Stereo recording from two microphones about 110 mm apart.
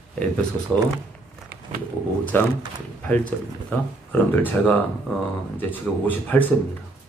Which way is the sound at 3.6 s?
15° left (ahead or behind).